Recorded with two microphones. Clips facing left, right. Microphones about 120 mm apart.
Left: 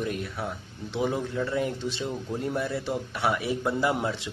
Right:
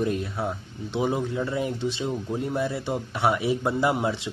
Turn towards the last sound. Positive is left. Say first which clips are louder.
# right 3 dB
turn(degrees=-20)  # may be behind; listen again after turning